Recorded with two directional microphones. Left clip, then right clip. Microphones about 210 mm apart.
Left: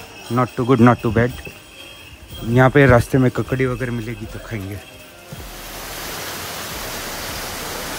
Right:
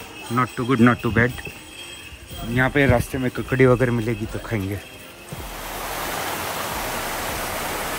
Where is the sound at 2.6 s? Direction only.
45° right (ahead or behind).